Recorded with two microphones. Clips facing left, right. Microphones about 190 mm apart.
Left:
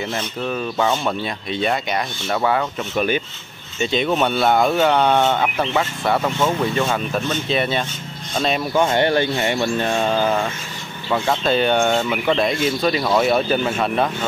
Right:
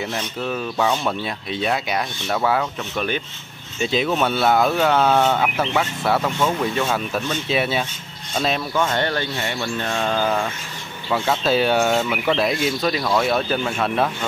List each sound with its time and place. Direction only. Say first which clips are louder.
0.1 s speech: left 1 dB; centre (ahead or behind)
3.8 s speech: left 1 dB; centre (ahead or behind)
8.9 s speech: left 5 dB; 15° left (ahead or behind)